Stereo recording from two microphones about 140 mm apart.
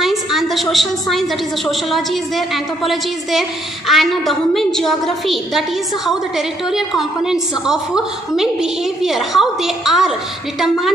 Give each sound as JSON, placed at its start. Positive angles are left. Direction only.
{"t": 0.0, "sound": "a woman's voice", "side_deg": 0}